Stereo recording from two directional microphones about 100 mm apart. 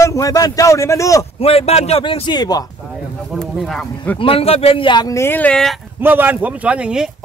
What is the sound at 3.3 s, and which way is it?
Speech, centre (ahead or behind).